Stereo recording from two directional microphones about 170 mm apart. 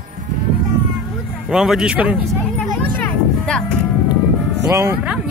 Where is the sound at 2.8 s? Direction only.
10° left (ahead or behind).